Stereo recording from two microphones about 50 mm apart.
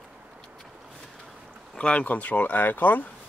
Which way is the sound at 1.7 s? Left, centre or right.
Left.